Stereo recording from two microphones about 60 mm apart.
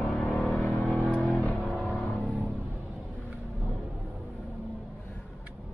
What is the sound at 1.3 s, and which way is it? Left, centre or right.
Vehicle, left.